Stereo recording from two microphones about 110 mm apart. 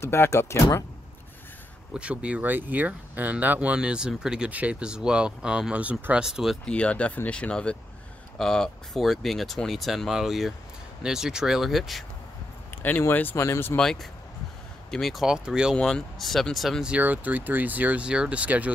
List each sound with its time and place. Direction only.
0.0 s speech: 25° left (ahead or behind)
2.0 s speech: 10° right (ahead or behind)
6.6 s speech: 10° left (ahead or behind)
12.7 s speech: 15° left (ahead or behind)
14.9 s speech: centre (ahead or behind)
15.7 s speech: 5° left (ahead or behind); by 18.7 s 15° right (ahead or behind)